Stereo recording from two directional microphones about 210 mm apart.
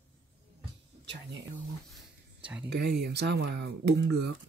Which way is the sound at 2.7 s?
50° right (ahead or behind).